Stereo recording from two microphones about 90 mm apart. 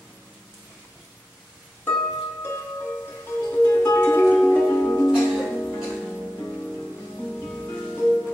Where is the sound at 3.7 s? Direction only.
35° left (ahead or behind).